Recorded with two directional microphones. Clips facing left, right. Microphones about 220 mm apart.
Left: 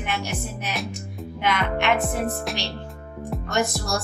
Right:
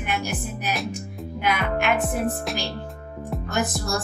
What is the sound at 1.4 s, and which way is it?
Speech, 5° right (ahead or behind).